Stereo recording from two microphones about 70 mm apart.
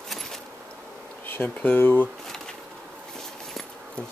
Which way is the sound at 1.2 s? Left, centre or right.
Left.